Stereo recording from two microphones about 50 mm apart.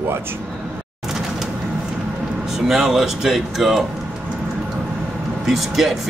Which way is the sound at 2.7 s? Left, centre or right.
Centre.